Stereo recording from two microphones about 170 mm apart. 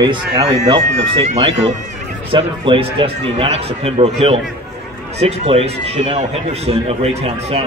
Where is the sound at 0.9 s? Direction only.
40° right (ahead or behind).